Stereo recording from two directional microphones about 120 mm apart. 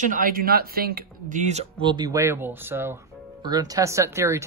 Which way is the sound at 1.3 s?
80° right.